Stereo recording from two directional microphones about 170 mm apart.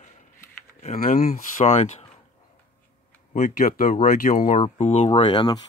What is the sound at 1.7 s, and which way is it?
Speech, 40° left (ahead or behind).